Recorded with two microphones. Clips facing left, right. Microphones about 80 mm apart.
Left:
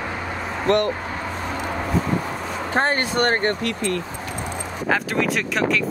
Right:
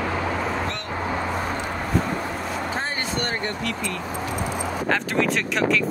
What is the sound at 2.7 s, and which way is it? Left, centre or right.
Speech, left.